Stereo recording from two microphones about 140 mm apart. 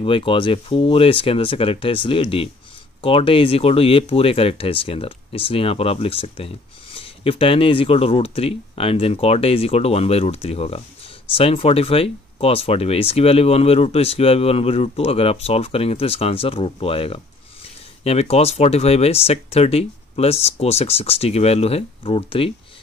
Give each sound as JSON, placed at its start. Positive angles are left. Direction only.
{"t": 0.0, "sound": "speech", "side_deg": 40}